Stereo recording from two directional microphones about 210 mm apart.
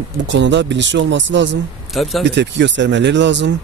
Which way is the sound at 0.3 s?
60° right (ahead or behind).